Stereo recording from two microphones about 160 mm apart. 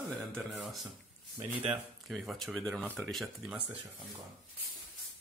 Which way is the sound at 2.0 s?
Centre (ahead or behind).